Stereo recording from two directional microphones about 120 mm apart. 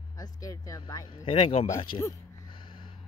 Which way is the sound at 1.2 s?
50° left (ahead or behind).